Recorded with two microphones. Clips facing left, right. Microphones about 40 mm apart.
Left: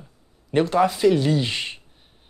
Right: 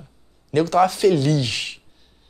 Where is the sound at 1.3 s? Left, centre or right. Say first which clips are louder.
Right 1 dB; left.